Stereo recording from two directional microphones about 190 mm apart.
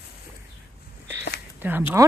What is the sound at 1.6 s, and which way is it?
Speech, 10° right (ahead or behind).